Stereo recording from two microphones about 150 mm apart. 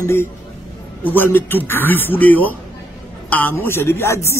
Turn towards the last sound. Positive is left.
turn(degrees=15)  # may be behind; listen again after turning